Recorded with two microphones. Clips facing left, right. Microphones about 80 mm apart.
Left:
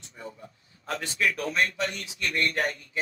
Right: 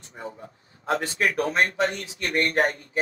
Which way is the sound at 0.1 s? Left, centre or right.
Right.